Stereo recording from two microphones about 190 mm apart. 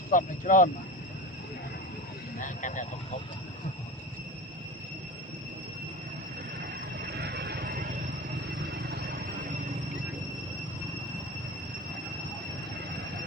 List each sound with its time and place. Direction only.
0.1 s speech: 45° left (ahead or behind)
2.3 s speech: 40° left (ahead or behind)
6.6 s train: 60° right (ahead or behind)